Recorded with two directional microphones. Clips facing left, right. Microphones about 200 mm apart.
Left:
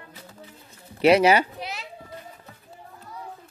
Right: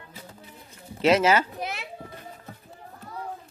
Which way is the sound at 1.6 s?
55° right (ahead or behind).